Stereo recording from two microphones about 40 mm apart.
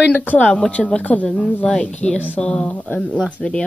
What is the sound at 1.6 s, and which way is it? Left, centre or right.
Speech, left.